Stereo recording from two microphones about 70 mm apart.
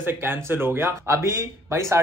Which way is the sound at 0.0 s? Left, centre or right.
Right.